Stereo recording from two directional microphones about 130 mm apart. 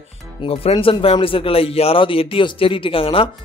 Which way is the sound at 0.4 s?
45° left (ahead or behind).